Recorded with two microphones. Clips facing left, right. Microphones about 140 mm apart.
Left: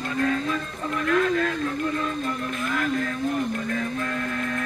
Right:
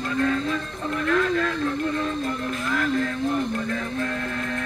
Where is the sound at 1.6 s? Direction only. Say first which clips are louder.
Right 1 dB; 35° right (ahead or behind).